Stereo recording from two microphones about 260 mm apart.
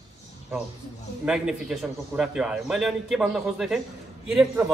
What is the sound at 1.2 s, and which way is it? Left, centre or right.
Speech, centre.